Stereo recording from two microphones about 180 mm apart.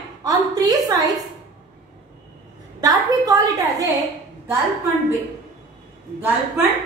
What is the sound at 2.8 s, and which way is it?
A woman's voice, 20° right (ahead or behind).